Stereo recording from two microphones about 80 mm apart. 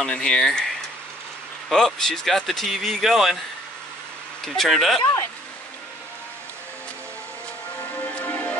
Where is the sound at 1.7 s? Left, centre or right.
Centre.